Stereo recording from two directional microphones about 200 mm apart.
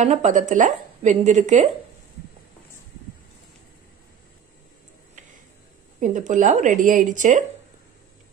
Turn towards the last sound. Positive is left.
turn(degrees=-40)  # may be behind; listen again after turning